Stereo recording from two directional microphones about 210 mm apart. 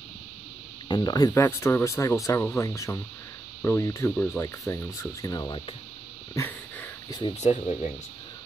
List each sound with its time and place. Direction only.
0.8 s speech: 20° left (ahead or behind)
6.3 s a sound: 10° left (ahead or behind)
7.2 s speech: 25° left (ahead or behind)